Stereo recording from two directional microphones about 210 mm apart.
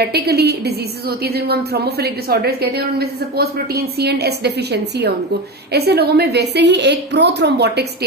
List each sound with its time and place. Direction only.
0.0 s a woman's voice: 50° right (ahead or behind)